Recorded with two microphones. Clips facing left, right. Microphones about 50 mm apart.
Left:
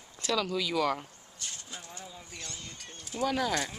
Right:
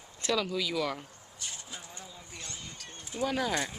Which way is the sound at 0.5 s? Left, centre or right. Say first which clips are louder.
Left 3 dB; centre.